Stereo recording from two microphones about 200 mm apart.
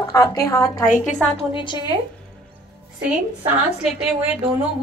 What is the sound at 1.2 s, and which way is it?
Speech, 5° left (ahead or behind).